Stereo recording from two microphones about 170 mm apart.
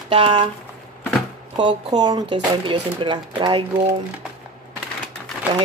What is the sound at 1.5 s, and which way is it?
Speech, 25° right (ahead or behind).